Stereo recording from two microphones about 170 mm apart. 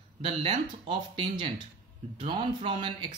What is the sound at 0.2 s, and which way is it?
Speech, 30° right (ahead or behind).